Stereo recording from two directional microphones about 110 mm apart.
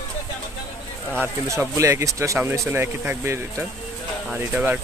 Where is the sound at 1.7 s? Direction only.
25° right (ahead or behind).